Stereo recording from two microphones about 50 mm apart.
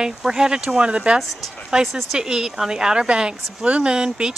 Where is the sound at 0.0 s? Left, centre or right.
Centre.